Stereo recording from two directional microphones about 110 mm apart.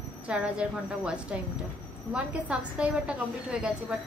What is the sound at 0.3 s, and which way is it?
A woman's voice, 10° right (ahead or behind).